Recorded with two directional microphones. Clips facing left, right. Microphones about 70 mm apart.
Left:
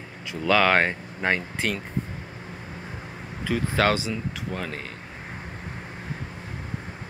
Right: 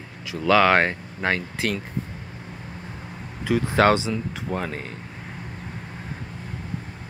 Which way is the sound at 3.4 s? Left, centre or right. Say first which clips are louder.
Right 4 dB; centre.